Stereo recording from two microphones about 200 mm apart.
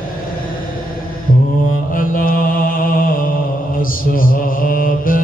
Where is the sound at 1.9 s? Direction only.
45° left (ahead or behind).